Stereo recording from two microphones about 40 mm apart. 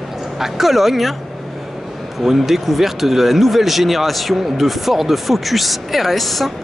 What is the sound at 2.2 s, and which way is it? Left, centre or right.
Speech, centre.